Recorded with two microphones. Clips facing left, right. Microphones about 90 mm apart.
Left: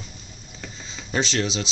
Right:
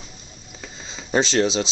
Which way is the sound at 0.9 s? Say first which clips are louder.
Right 5 dB; 25° right (ahead or behind).